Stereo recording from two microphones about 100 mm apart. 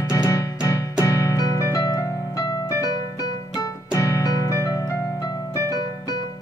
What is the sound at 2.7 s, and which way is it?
Music, 35° left (ahead or behind).